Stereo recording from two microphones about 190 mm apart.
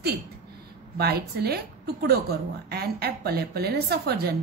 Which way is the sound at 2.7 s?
55° right (ahead or behind).